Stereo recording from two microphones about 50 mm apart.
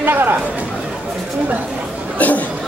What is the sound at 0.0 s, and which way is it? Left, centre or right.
Speech, right.